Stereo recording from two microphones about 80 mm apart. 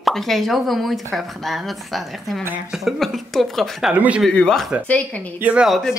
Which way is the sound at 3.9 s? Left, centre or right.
Centre.